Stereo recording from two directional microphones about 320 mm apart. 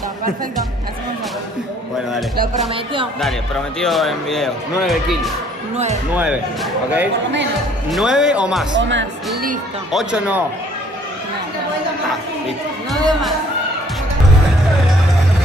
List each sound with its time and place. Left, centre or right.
2.7 s speech: centre
3.8 s speech: centre
8.7 s speech: right
9.9 s speech: centre